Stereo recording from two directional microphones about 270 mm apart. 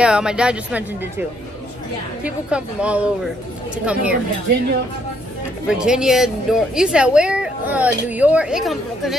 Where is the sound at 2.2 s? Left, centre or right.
Centre.